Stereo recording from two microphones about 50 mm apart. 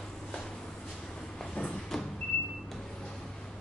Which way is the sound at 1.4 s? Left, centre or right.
Centre.